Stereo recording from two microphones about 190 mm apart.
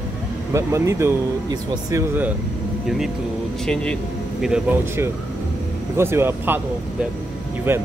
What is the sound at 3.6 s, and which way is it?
Speech, 5° left (ahead or behind).